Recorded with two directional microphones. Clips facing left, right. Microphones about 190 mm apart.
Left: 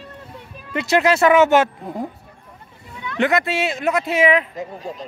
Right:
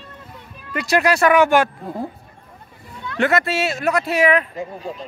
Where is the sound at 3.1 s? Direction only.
15° left (ahead or behind).